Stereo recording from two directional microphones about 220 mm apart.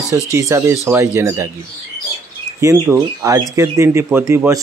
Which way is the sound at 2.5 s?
15° right (ahead or behind).